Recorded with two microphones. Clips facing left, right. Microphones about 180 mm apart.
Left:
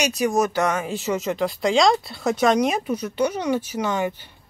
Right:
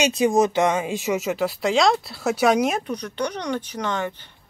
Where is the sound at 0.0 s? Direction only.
25° right (ahead or behind).